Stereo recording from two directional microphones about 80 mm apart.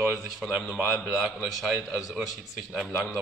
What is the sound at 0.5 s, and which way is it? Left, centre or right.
Speech, centre.